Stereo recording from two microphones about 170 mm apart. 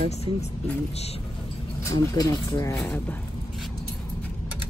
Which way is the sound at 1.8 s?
20° left (ahead or behind).